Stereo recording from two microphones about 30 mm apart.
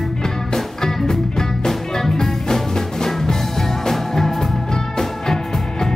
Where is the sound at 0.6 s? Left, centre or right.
Centre.